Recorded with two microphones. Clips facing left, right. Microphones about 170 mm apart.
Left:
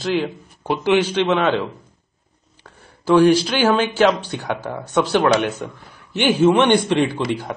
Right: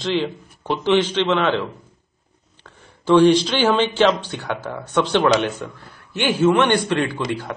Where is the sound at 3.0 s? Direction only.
5° left (ahead or behind).